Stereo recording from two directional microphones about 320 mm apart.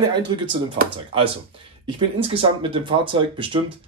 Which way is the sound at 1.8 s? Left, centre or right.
Centre.